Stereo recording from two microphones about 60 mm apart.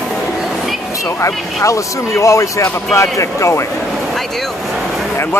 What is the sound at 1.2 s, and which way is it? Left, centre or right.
Speech, left.